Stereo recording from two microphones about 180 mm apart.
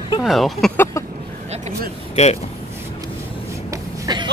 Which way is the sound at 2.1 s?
35° left (ahead or behind).